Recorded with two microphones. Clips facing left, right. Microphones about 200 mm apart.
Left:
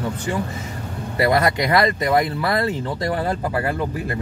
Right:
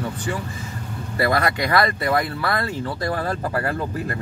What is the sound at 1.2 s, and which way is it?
Speech, 20° left (ahead or behind).